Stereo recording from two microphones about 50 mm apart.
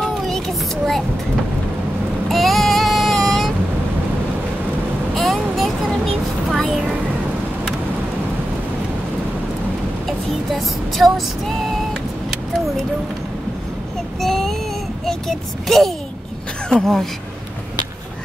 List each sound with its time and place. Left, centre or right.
0.0 s child singing: centre
2.2 s a sound: centre
5.1 s vehicle: centre
10.0 s female singing: centre
14.2 s child singing: centre
15.0 s a woman's voice: centre